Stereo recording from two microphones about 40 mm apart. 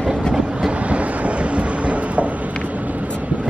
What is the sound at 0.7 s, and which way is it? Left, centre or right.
Train, right.